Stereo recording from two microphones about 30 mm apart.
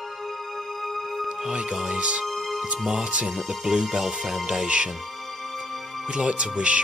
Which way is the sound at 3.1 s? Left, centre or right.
Right.